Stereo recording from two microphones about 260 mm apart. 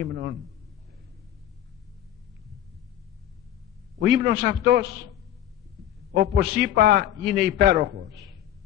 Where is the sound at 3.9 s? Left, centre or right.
Right.